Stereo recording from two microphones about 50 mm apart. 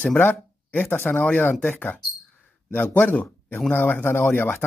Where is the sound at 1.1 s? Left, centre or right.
Left.